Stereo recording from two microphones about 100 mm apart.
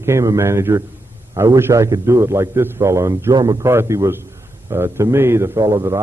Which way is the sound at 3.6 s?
30° right (ahead or behind).